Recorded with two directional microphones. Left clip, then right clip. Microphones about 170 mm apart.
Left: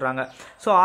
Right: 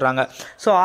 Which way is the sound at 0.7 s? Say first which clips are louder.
Right 2 dB; 25° right (ahead or behind).